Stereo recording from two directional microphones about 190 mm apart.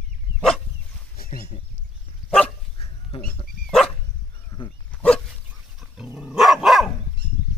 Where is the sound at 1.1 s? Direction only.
50° left (ahead or behind).